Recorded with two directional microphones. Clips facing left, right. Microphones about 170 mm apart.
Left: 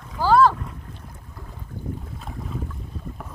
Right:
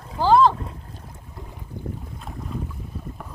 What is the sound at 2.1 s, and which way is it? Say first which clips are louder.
Boat: right 1 dB; centre (ahead or behind).